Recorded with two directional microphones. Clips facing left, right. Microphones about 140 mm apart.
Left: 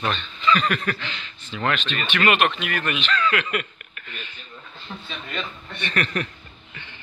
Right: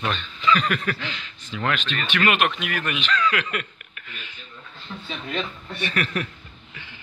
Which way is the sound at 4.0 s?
10° right (ahead or behind).